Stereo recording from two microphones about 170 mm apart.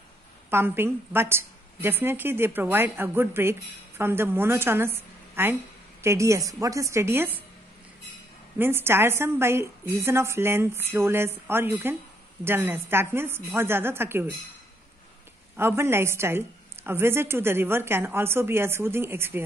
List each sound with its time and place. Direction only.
0.5 s a woman's voice: 15° right (ahead or behind)
8.5 s a woman's voice: 15° right (ahead or behind)
15.5 s a woman's voice: 15° right (ahead or behind)